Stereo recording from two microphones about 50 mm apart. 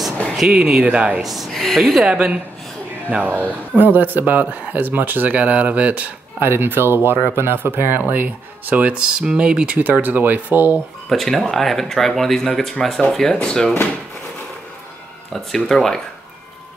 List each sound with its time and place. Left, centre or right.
0.5 s speech: centre
1.2 s speech: centre
1.5 s speech: centre
2.0 s speech: centre
3.1 s speech: right
6.4 s speech: right; by 9.8 s centre
9.8 s speech: right
11.1 s speech: centre
15.5 s speech: centre